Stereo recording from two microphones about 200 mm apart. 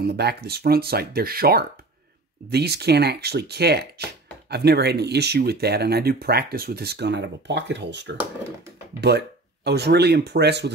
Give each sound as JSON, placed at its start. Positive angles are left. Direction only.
{"t": 0.0, "sound": "speech", "side_deg": -55}